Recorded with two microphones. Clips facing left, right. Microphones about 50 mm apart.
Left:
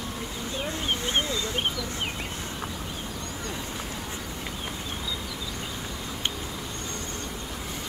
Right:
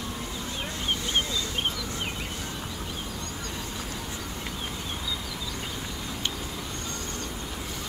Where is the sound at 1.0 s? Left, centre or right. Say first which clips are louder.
Left 1 dB; left.